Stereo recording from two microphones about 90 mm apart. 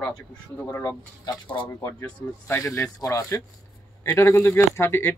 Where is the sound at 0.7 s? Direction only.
40° left (ahead or behind).